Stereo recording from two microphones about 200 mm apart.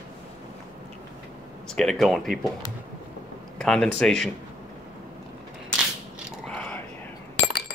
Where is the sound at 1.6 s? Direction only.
Centre (ahead or behind).